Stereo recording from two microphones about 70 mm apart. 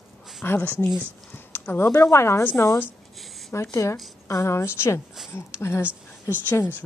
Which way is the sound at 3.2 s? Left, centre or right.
Centre.